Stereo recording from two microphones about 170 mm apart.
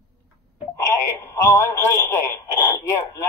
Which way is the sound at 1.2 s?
15° left (ahead or behind).